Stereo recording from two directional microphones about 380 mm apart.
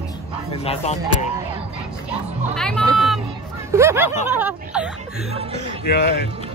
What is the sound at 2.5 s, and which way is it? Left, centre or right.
Speech, centre.